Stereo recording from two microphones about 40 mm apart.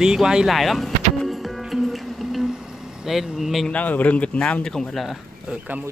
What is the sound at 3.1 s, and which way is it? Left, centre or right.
Speech, centre.